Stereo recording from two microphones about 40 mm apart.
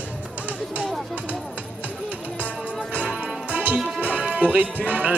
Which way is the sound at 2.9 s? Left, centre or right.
Right.